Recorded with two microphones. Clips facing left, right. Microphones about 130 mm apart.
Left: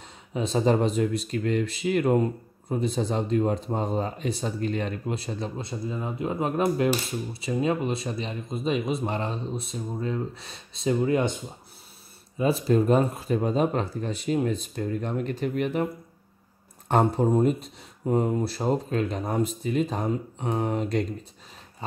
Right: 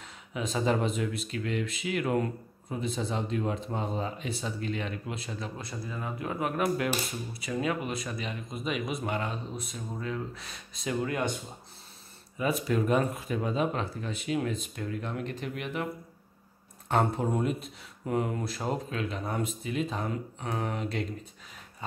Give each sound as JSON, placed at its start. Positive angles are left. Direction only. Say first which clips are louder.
{"t": 0.3, "sound": "speech", "louder": "left 5 dB", "side_deg": 35}
{"t": 5.6, "sound": "speech", "louder": "left 6 dB", "side_deg": 20}
{"t": 12.4, "sound": "speech", "louder": "left 6 dB", "side_deg": 30}
{"t": 17.2, "sound": "speech", "louder": "left 7 dB", "side_deg": 40}
{"t": 20.1, "sound": "speech", "louder": "left 6 dB", "side_deg": 25}